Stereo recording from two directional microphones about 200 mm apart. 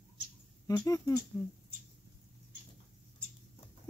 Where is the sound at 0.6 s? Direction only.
15° left (ahead or behind).